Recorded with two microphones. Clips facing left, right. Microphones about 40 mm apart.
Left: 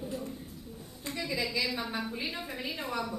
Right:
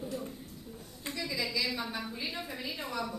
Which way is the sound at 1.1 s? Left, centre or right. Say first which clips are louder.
Left 2 dB; centre.